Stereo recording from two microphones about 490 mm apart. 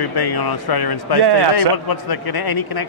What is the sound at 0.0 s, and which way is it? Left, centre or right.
Speech, left.